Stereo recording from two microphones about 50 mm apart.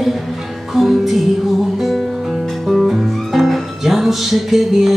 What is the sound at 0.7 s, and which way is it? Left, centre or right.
Music, centre.